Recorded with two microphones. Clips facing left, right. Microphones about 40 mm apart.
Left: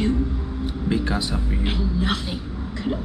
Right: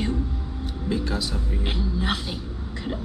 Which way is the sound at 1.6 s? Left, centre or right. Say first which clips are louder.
Left 2 dB; centre.